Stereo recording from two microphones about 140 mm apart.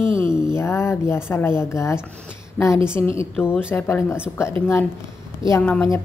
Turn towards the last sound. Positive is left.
turn(degrees=10)  # may be behind; listen again after turning